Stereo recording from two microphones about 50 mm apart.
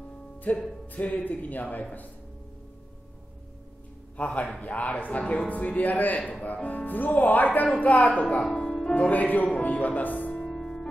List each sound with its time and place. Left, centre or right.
0.5 s speech: left
4.2 s speech: left
8.5 s music: centre
8.9 s speech: left
10.3 s music: centre